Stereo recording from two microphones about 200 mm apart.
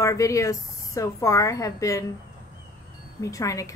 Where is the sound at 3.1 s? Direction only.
15° left (ahead or behind).